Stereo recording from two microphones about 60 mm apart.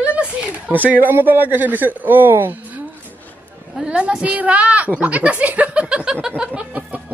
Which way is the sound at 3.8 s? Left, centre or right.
Centre.